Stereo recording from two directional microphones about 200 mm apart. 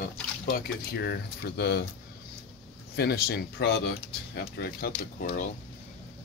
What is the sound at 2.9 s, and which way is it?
Speech, 55° left (ahead or behind).